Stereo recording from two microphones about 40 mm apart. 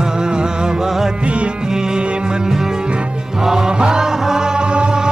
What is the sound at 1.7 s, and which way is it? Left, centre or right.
Music, centre.